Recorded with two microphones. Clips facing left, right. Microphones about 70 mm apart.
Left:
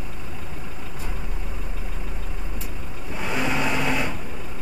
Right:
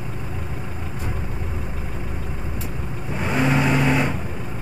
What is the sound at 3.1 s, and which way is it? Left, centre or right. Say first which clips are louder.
Vehicle: right 5 dB; centre.